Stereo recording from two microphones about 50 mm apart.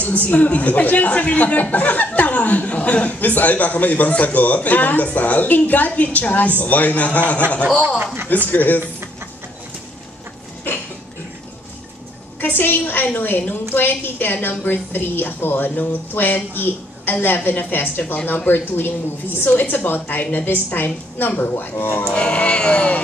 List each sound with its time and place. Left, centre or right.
0.2 s a woman's voice: left
8.0 s speech: right
8.5 s a woman's voice: left
12.4 s a woman's voice: left
22.1 s speech: left